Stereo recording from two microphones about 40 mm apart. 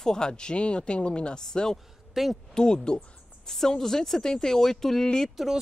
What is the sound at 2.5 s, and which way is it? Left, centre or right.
Speech, centre.